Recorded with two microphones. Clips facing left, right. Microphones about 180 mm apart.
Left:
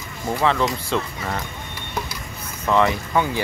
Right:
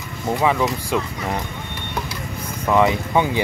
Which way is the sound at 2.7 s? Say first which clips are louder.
Right 2 dB; 15° right (ahead or behind).